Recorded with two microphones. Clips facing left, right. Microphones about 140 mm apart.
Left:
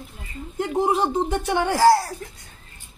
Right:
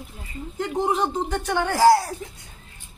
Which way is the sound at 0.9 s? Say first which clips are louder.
Left 2 dB; 10° left (ahead or behind).